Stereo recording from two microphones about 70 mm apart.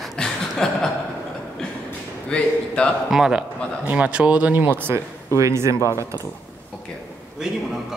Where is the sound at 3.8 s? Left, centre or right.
Centre.